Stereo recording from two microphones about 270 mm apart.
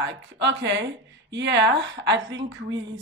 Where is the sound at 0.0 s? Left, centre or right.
Right.